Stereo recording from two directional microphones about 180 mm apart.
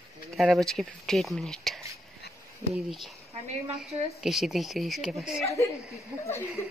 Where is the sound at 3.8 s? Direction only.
Centre (ahead or behind).